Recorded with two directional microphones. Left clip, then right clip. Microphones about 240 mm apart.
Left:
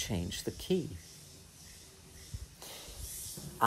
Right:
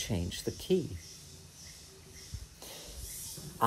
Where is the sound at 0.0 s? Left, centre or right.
Centre.